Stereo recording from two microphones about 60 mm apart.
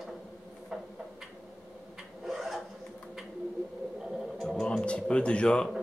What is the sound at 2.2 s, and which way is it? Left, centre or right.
Filing, centre.